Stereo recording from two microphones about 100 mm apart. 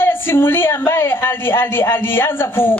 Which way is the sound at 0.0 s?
20° left (ahead or behind).